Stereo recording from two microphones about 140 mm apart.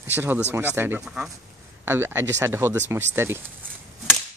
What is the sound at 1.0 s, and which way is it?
Speech, 5° right (ahead or behind).